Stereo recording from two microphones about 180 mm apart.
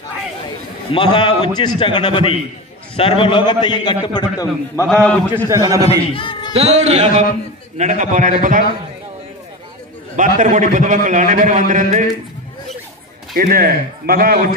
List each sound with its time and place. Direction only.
0.9 s a man's voice: 25° left (ahead or behind)
4.8 s a man's voice: 5° left (ahead or behind)
5.5 s a man's voice: 15° right (ahead or behind)
5.9 s a man's voice: 30° left (ahead or behind)
6.5 s a man's voice: 35° right (ahead or behind)
10.1 s a man's voice: 45° right (ahead or behind)
13.4 s a man's voice: 55° right (ahead or behind)